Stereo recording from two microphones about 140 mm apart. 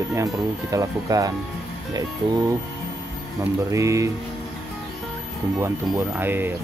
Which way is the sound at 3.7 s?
20° right (ahead or behind).